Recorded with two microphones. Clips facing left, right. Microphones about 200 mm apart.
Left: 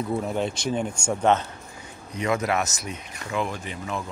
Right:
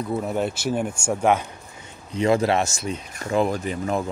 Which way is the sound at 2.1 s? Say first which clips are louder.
Right 5 dB; 30° right (ahead or behind).